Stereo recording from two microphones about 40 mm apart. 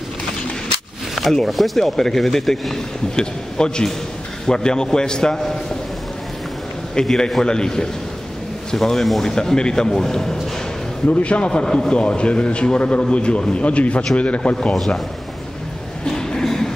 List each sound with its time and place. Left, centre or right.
1.5 s speech: centre
1.8 s a man's voice: centre
7.0 s speech: centre
11.1 s a man's voice: left
16.1 s a sound: centre